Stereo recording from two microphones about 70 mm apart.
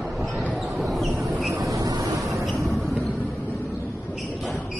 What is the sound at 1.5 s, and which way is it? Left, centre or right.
Vehicle, right.